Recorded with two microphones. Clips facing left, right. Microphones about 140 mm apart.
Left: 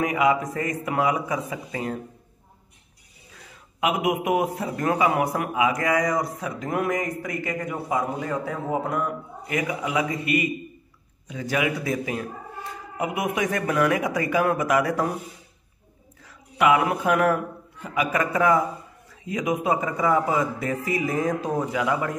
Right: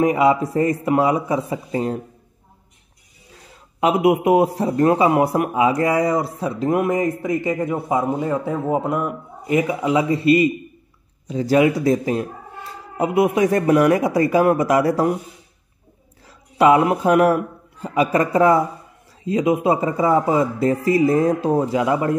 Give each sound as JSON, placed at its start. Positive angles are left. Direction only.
{"t": 0.0, "sound": "a man's voice", "side_deg": -30}
{"t": 3.8, "sound": "a man's voice", "side_deg": -30}
{"t": 16.2, "sound": "a man's voice", "side_deg": -30}